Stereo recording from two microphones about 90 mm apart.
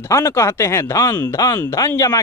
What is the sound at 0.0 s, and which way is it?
A man's voice, 35° left (ahead or behind).